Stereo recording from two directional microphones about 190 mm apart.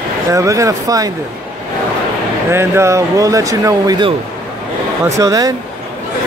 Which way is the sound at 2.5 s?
15° right (ahead or behind).